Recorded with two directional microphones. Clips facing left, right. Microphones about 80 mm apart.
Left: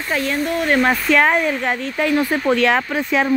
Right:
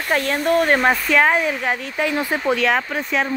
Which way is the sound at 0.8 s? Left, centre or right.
Centre.